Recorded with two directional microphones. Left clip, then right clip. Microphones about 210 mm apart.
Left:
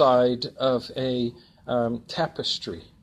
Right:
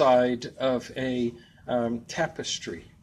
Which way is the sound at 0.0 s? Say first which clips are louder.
Left 2 dB; 30° left (ahead or behind).